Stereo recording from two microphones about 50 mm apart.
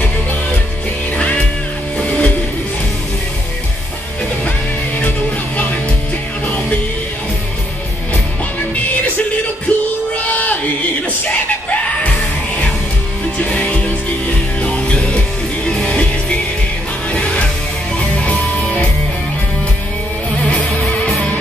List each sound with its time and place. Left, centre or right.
1.1 s music: left
6.4 s music: left
9.7 s music: left
10.3 s chant: left
13.4 s music: left